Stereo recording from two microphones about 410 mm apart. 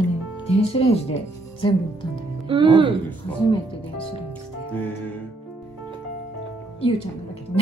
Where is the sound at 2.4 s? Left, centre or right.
Centre.